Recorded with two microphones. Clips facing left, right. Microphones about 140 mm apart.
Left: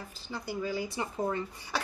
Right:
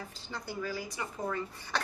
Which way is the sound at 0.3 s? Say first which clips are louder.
Left 3 dB; 15° left (ahead or behind).